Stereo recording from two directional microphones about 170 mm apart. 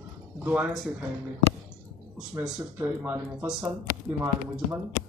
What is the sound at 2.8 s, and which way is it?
Speech, 10° right (ahead or behind).